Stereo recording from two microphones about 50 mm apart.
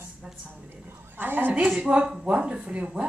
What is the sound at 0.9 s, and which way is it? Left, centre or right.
Speech, right.